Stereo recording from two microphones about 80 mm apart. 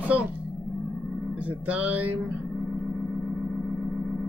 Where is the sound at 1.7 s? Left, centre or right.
Centre.